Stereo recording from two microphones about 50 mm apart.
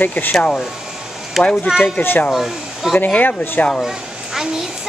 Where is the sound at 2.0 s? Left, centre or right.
Left.